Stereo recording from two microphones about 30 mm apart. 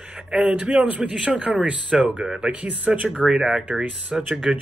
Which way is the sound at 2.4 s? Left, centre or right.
Right.